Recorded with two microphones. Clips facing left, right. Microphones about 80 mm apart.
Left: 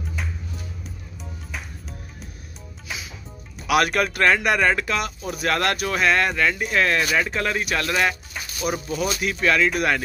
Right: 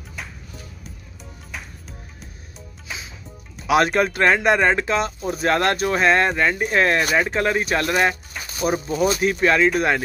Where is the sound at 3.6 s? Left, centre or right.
Right.